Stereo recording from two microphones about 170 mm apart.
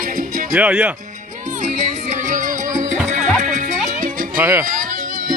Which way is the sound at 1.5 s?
45° right (ahead or behind).